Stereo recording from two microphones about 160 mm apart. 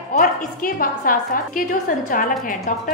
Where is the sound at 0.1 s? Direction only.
50° left (ahead or behind).